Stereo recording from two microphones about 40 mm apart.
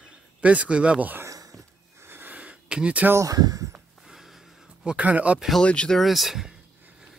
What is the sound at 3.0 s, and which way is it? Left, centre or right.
Speech, right.